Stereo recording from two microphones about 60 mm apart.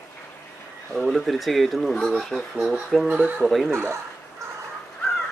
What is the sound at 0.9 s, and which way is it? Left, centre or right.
Speech, centre.